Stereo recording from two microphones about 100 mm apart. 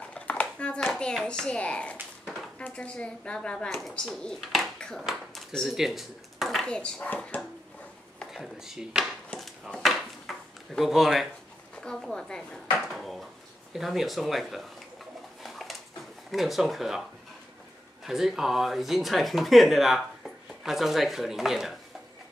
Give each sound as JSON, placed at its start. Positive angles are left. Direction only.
{"t": 0.1, "sound": "a child's voice", "side_deg": 10}
{"t": 8.3, "sound": "speech", "side_deg": -5}
{"t": 9.4, "sound": "a sound", "side_deg": 0}
{"t": 11.7, "sound": "speech", "side_deg": 10}
{"t": 15.4, "sound": "dog", "side_deg": 0}
{"t": 16.3, "sound": "speech", "side_deg": 0}
{"t": 18.0, "sound": "speech", "side_deg": -5}